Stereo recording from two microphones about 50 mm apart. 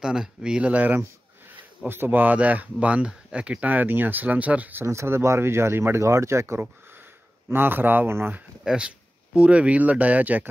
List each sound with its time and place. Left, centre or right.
0.0 s speech: centre
1.9 s speech: right
4.8 s speech: right
7.4 s speech: right
8.6 s speech: centre